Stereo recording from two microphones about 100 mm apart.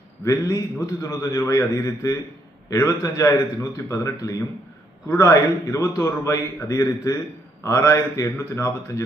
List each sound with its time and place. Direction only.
0.2 s a man's voice: 35° left (ahead or behind)